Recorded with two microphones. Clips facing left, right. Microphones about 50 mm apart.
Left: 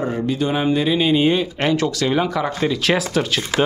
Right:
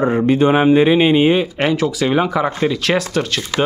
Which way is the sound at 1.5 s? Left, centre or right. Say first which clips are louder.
Right 2 dB; centre.